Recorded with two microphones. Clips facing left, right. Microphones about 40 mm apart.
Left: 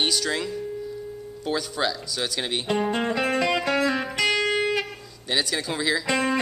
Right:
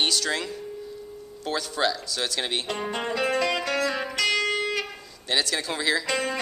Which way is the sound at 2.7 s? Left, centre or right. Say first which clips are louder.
Left 5 dB; centre.